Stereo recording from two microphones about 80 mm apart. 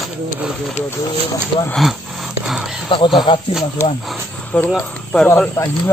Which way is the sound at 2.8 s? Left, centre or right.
Left.